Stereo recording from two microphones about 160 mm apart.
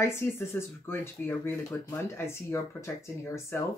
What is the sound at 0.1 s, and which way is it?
Speech, 15° left (ahead or behind).